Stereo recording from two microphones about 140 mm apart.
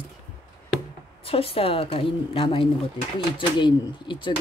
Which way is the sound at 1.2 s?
40° left (ahead or behind).